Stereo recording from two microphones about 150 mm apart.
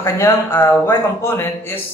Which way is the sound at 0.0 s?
15° left (ahead or behind).